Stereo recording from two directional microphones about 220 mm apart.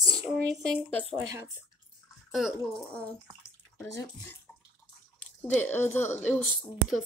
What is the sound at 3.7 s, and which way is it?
Speech, 10° left (ahead or behind).